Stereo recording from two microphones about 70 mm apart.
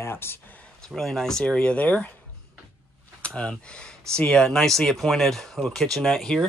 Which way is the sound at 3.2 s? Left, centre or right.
Centre.